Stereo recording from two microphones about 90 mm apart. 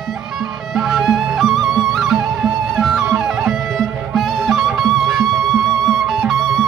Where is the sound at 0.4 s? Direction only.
5° right (ahead or behind).